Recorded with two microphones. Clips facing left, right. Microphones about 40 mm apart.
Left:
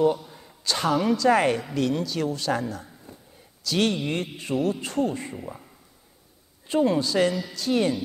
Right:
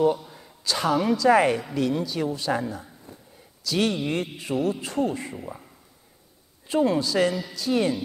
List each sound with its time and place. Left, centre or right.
0.0 s a sound: centre
0.7 s speech: centre
3.8 s speech: centre
6.7 s speech: centre